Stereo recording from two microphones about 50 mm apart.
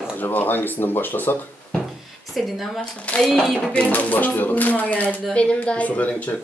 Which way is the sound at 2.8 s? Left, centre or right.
Left.